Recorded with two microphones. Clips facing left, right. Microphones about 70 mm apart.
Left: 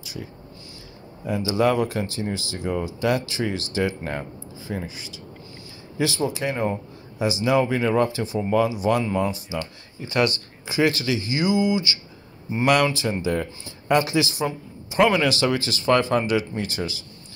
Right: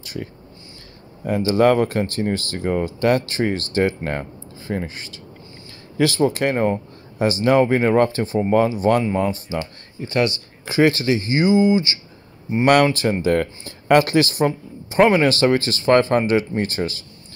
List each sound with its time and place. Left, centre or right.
0.0 s speech: right
10.1 s speech: right
10.8 s speech: right
12.9 s speech: right